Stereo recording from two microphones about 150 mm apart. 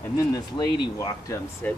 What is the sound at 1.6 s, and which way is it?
Speech, 10° left (ahead or behind).